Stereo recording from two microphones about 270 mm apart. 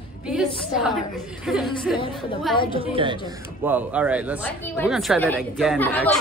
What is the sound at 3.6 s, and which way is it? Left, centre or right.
Speech, centre.